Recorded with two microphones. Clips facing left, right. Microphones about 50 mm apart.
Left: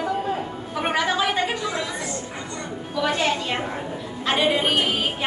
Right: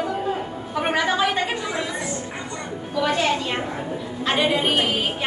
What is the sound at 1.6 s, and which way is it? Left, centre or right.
Speech, centre.